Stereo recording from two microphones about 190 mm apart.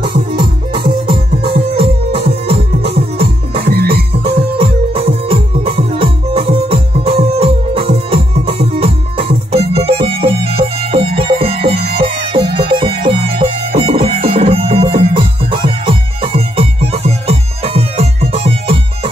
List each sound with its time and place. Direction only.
0.3 s music: 25° right (ahead or behind)
3.2 s music: 55° right (ahead or behind)
4.6 s music: 30° right (ahead or behind)
11.7 s music: 60° right (ahead or behind)
12.0 s music: 25° right (ahead or behind)